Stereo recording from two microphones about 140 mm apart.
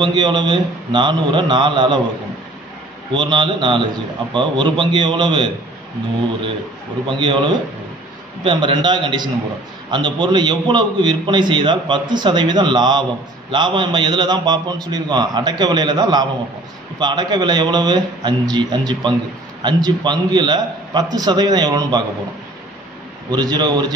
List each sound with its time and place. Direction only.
0.0 s a man's voice: 35° right (ahead or behind)
3.2 s a man's voice: 35° right (ahead or behind)
7.1 s a man's voice: 35° right (ahead or behind)
23.3 s a man's voice: 30° right (ahead or behind)